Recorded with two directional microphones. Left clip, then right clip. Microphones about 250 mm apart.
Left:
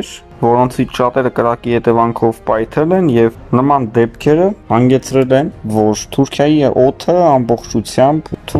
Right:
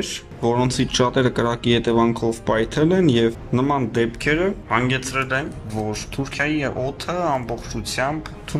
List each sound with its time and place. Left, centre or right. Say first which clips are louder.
0.4 s speech: left 10 dB; centre
0.7 s speech: left 5 dB; centre; by 8.2 s left